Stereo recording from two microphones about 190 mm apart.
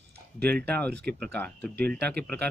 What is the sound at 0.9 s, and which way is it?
Speech, 60° right (ahead or behind).